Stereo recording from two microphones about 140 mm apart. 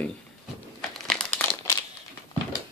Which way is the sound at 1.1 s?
10° left (ahead or behind).